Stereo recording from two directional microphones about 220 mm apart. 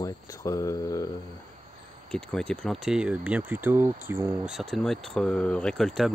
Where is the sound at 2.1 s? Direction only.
5° left (ahead or behind).